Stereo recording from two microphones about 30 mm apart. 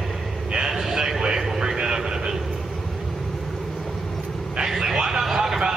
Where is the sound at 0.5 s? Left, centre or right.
Right.